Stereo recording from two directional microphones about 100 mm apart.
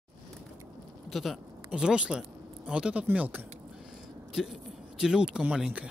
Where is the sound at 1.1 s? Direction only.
Centre (ahead or behind).